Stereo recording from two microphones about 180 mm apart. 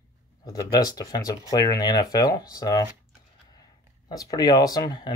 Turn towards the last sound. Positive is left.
turn(degrees=25)  # may be behind; listen again after turning